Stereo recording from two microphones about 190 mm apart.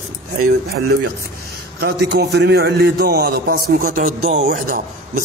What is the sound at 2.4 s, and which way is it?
A man's voice, 60° right (ahead or behind).